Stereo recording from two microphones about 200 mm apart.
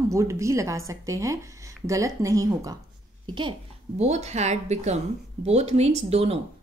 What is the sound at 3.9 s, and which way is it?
Speech, 35° right (ahead or behind).